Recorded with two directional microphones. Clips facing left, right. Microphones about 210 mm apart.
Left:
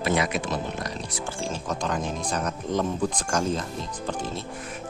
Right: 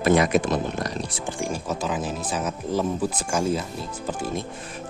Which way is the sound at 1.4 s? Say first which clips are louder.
Right 2 dB; 10° right (ahead or behind).